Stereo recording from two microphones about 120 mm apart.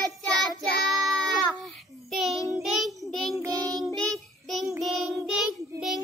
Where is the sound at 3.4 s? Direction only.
30° right (ahead or behind).